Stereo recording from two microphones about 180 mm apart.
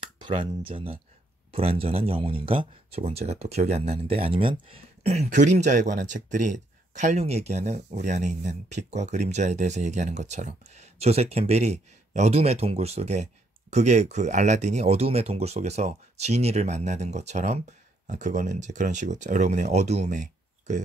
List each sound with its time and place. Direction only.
0.2 s speech: 30° right (ahead or behind)